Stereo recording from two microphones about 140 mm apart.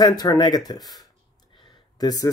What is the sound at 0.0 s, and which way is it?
Speech, 30° left (ahead or behind).